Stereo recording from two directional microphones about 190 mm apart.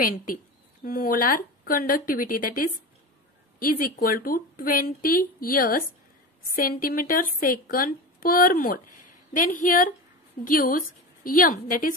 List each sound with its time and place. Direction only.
0.0 s speech: 45° left (ahead or behind)